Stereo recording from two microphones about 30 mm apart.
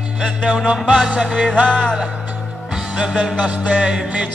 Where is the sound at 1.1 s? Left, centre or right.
Centre.